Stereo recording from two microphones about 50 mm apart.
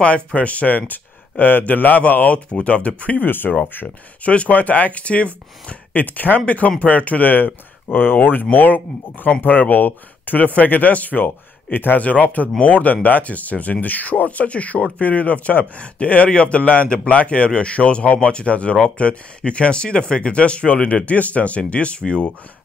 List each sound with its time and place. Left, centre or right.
0.0 s speech: left
4.2 s speech: left